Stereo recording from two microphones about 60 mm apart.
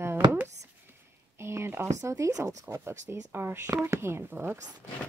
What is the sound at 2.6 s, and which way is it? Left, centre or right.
Speech, right.